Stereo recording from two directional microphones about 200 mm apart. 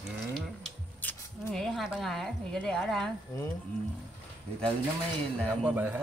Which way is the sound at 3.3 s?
20° left (ahead or behind).